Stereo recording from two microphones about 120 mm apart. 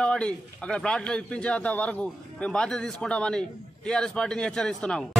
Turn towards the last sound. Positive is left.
turn(degrees=5)  # may be behind; listen again after turning